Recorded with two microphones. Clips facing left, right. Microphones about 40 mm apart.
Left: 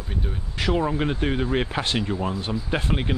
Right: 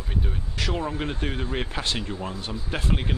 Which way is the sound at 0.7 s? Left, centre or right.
Centre.